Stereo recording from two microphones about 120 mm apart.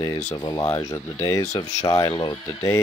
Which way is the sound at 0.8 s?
25° left (ahead or behind).